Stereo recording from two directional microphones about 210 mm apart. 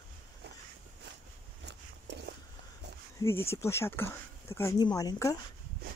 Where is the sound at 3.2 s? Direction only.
10° left (ahead or behind).